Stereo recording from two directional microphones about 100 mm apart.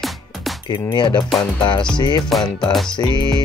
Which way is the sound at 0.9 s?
45° left (ahead or behind).